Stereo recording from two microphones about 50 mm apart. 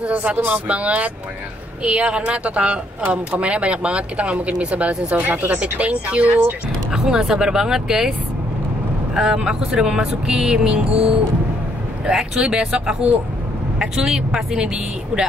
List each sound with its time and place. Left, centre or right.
0.0 s speech: right
6.9 s speech: centre
9.1 s speech: centre
12.1 s speech: centre